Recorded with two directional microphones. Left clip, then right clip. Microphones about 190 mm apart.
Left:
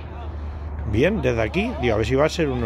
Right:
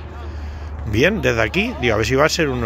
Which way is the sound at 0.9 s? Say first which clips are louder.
Right 4 dB; centre (ahead or behind).